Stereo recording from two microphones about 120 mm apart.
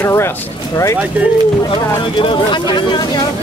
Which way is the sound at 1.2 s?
15° right (ahead or behind).